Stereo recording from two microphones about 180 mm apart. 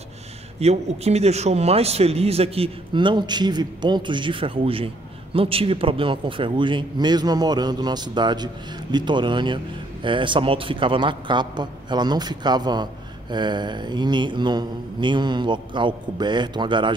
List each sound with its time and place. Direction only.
0.6 s speech: 35° right (ahead or behind)